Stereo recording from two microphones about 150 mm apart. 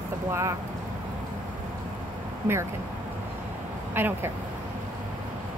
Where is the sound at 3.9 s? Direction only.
15° right (ahead or behind).